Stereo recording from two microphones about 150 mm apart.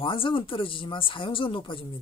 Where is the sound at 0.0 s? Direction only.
35° left (ahead or behind).